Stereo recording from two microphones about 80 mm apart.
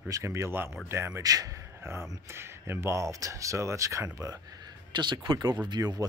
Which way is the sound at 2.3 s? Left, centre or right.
Right.